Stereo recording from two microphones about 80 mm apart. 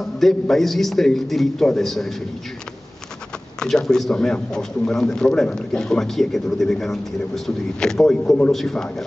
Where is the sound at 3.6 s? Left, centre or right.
Centre.